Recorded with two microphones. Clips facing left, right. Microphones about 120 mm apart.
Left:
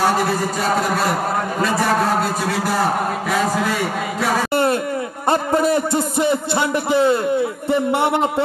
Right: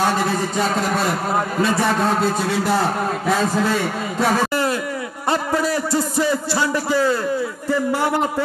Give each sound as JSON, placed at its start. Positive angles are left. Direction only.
{"t": 5.5, "sound": "a man's voice", "side_deg": 20}